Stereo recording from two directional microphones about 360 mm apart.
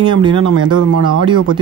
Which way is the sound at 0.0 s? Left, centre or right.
Centre.